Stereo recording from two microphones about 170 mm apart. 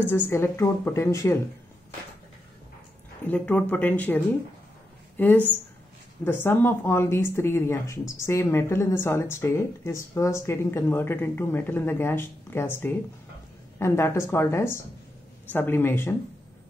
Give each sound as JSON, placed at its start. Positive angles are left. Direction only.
{"t": 0.1, "sound": "speech", "side_deg": 15}
{"t": 3.3, "sound": "speech", "side_deg": 10}